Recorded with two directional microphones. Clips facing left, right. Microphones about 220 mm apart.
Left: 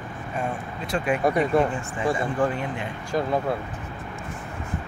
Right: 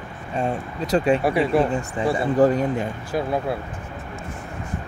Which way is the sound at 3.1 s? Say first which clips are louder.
Left 1 dB; 5° right (ahead or behind).